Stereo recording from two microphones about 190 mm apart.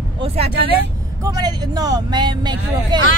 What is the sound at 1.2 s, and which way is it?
Speech, 20° right (ahead or behind).